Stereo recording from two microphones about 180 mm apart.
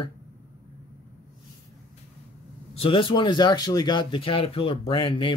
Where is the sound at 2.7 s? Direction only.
30° left (ahead or behind).